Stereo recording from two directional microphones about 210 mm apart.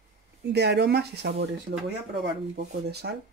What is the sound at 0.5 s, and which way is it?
Speech, 55° right (ahead or behind).